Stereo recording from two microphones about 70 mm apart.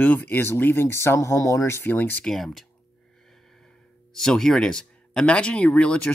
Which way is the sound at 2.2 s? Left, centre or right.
Centre.